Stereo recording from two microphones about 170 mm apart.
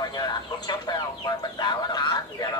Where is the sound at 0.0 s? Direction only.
25° left (ahead or behind).